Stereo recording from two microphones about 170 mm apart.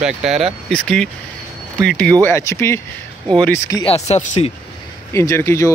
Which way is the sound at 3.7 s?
30° left (ahead or behind).